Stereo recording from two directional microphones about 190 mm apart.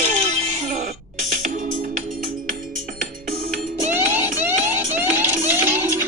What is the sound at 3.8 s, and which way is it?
Music, 10° right (ahead or behind).